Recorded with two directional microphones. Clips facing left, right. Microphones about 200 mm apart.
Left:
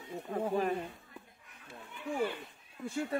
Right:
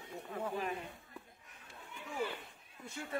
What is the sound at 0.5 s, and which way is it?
Speech, 40° left (ahead or behind).